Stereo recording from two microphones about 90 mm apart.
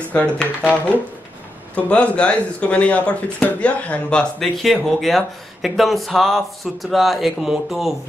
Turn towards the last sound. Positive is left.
turn(degrees=0)  # may be behind; listen again after turning